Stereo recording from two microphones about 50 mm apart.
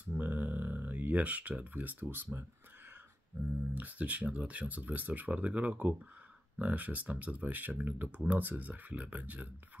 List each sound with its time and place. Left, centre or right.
0.0 s a sound: right
1.6 s speech: right
3.7 s speech: right